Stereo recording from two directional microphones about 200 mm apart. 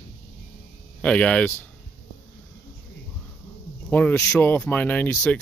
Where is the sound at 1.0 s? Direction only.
5° left (ahead or behind).